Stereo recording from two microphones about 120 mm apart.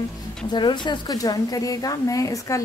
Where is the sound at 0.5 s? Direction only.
40° left (ahead or behind).